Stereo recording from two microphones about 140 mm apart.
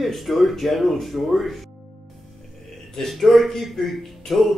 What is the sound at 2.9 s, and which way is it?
A man's voice, centre (ahead or behind).